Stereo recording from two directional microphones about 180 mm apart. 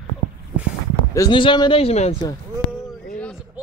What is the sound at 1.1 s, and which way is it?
A man's voice, 25° left (ahead or behind).